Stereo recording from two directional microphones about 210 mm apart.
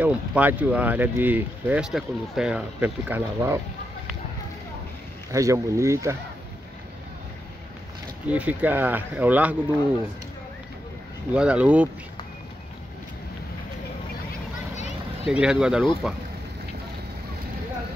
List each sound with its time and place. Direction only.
0.0 s speech: 5° right (ahead or behind)
5.3 s speech: 15° right (ahead or behind)
8.3 s speech: 5° right (ahead or behind)
11.3 s speech: 5° right (ahead or behind)
15.2 s speech: 5° right (ahead or behind)